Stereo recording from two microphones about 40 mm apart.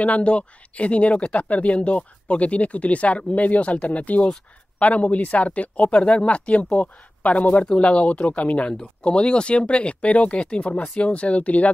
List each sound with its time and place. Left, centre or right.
0.0 s speech: left
6.8 s speech: left
7.6 s speech: left